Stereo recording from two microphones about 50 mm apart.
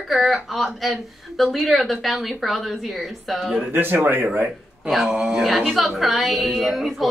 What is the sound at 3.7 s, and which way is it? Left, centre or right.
Speech, right.